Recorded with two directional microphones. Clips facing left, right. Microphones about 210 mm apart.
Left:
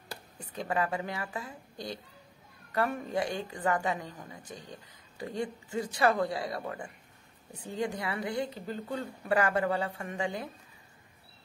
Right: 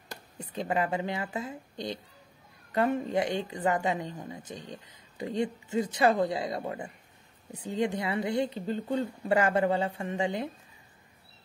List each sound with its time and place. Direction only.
0.4 s a woman's voice: 20° right (ahead or behind)